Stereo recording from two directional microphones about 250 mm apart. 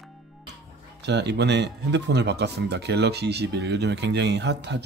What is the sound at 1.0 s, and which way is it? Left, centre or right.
Speech, right.